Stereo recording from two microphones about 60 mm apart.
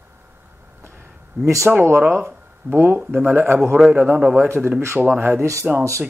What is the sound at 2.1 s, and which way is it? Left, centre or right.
Speech, right.